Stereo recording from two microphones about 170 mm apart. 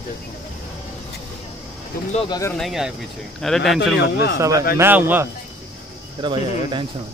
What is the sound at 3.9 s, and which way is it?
Speech, 75° left (ahead or behind).